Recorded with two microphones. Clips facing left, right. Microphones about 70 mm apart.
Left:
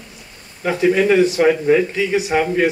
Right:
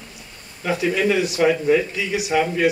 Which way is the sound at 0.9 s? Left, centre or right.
Left.